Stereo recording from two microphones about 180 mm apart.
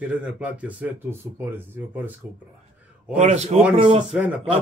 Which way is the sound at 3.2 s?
40° right (ahead or behind).